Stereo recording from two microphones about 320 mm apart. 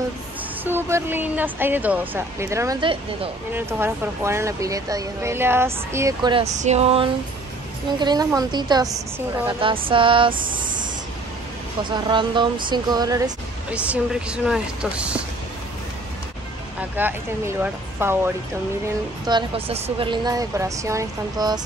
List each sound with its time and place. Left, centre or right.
0.7 s a woman's voice: centre
11.9 s speech: centre
16.9 s a woman's voice: centre